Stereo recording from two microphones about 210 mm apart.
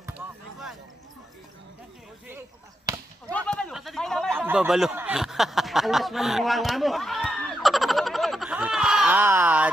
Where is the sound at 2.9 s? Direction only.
15° right (ahead or behind).